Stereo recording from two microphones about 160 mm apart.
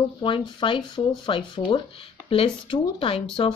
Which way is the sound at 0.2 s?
30° left (ahead or behind).